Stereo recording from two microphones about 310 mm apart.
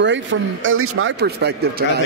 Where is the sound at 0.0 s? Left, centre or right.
Right.